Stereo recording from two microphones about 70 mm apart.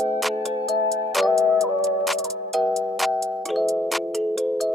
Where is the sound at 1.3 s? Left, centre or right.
Right.